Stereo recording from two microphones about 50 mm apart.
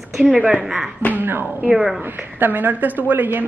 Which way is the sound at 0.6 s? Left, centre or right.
Centre.